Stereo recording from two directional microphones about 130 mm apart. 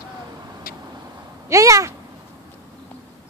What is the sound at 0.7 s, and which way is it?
Vehicle, 90° left.